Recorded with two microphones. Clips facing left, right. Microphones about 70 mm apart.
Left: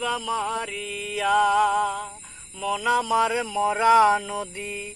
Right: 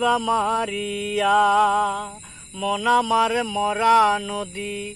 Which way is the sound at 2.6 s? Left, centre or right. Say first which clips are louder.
Right 4 dB; centre.